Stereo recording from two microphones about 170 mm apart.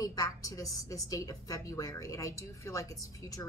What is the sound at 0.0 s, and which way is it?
A woman's voice, 20° left (ahead or behind).